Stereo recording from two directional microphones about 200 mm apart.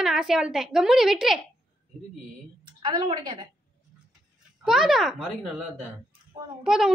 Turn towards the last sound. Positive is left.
turn(degrees=-5)  # may be behind; listen again after turning